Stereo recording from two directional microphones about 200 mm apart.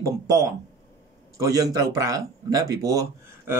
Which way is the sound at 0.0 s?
15° right (ahead or behind).